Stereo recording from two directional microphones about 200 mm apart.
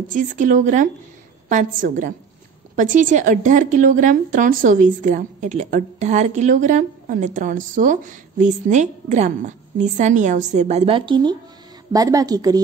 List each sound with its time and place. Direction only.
0.1 s a woman's voice: 40° right (ahead or behind); by 12.6 s 20° right (ahead or behind)